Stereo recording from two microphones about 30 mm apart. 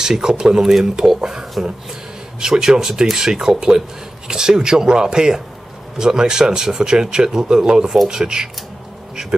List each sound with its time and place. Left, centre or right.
0.0 s speech: right